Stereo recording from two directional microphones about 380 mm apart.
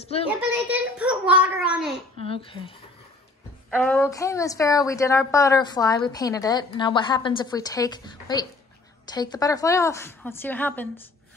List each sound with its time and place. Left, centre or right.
0.0 s a woman's voice: centre
0.4 s speech: centre
1.7 s babbling: centre
2.1 s speech: centre
3.7 s a woman's voice: centre